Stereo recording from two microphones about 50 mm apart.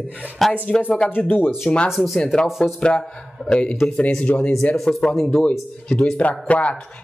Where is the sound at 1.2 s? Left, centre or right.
Left.